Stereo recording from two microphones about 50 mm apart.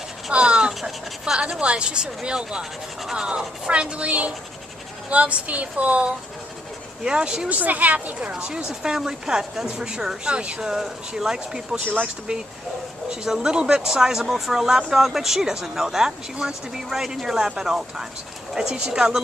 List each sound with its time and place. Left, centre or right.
0.3 s a sound: right
1.4 s speech: right
8.3 s speech: centre
10.6 s speech: centre
11.8 s speech: right
13.1 s speech: centre